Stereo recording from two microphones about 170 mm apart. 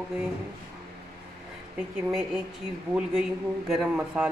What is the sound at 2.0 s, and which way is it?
A man's voice, centre (ahead or behind).